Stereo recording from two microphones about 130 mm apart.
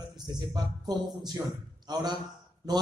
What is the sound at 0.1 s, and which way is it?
A man's voice, 35° right (ahead or behind).